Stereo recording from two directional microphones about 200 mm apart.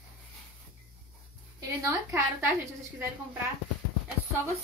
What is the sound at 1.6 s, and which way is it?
Speech, 15° right (ahead or behind).